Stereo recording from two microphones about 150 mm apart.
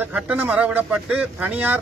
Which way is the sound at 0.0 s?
10° right (ahead or behind).